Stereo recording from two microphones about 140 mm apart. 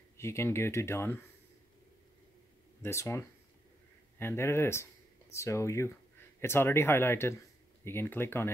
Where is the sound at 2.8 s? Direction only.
20° left (ahead or behind).